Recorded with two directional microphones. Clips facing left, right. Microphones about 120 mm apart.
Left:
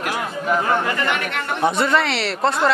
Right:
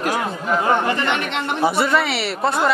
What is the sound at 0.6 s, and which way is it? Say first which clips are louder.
Speech: right 4 dB; 20° right (ahead or behind).